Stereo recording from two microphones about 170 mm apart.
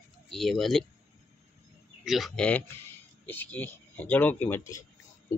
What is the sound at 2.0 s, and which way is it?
Speech, centre (ahead or behind).